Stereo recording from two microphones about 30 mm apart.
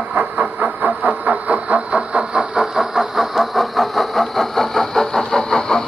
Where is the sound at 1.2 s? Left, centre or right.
Right.